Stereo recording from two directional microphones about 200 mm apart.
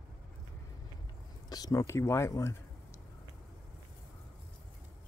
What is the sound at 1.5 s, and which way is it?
Speech, 20° left (ahead or behind).